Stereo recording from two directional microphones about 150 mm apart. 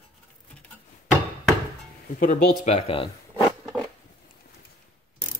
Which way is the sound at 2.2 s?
50° left (ahead or behind).